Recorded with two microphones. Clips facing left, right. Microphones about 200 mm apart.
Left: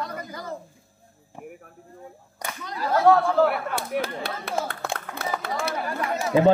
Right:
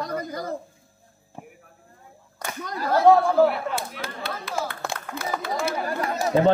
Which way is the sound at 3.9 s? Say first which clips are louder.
Left 9 dB; 60° left (ahead or behind).